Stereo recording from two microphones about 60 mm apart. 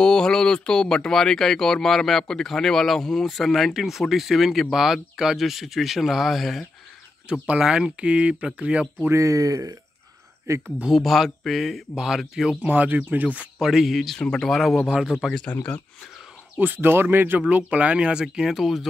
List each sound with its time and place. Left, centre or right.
0.0 s speech: centre
7.4 s speech: centre
9.1 s speech: right
10.5 s speech: right
11.0 s speech: centre
12.6 s speech: right
13.6 s speech: centre
14.9 s speech: centre
15.6 s speech: left
16.5 s speech: right
17.4 s speech: right; by 18.9 s centre